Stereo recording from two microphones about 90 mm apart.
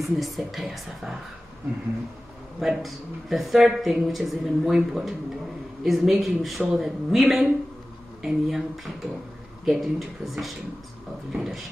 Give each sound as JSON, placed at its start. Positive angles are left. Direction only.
{"t": 0.0, "sound": "speech", "side_deg": 0}
{"t": 2.6, "sound": "speech", "side_deg": 0}